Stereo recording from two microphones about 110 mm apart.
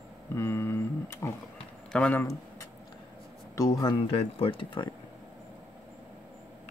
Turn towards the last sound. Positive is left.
turn(degrees=50)  # may be behind; listen again after turning